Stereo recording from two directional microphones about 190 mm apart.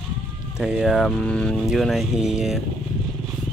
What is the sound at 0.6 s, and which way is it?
Speech, 5° right (ahead or behind).